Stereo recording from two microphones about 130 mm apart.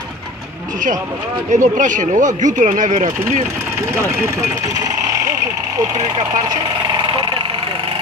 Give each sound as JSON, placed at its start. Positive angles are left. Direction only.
{"t": 1.5, "sound": "speech", "side_deg": -80}
{"t": 6.5, "sound": "vehicle", "side_deg": -35}